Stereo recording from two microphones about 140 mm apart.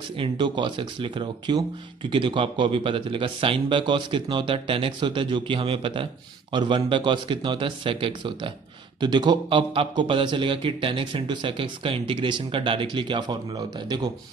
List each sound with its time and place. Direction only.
0.2 s speech: 35° right (ahead or behind)